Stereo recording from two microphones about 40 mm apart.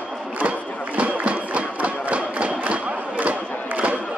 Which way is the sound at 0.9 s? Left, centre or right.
Right.